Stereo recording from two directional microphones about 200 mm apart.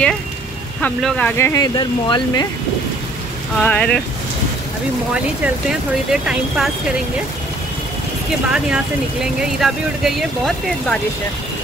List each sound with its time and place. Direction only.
0.7 s speech: 5° left (ahead or behind); by 2.4 s 20° left (ahead or behind)
3.5 s speech: 5° left (ahead or behind)
6.2 s speech: 5° right (ahead or behind)
8.3 s speech: 5° right (ahead or behind)